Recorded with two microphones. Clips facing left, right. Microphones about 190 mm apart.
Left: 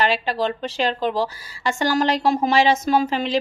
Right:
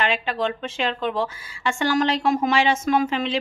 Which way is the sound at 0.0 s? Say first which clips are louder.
Left 2 dB; 35° left (ahead or behind).